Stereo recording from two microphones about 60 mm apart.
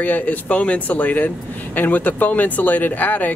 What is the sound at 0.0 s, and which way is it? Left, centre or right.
Speech, left.